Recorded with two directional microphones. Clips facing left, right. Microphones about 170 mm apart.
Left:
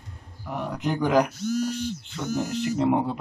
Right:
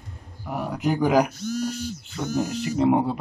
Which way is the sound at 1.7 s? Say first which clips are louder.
Left 1 dB; 35° right (ahead or behind).